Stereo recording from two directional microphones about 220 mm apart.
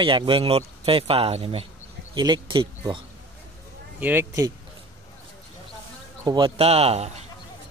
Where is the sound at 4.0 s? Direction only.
10° right (ahead or behind).